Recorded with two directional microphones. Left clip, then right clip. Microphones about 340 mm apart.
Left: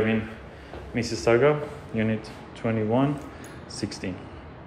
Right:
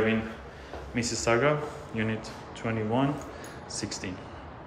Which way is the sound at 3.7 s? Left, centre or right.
Right.